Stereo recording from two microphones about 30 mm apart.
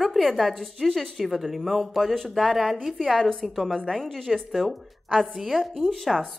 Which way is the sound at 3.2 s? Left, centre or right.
Centre.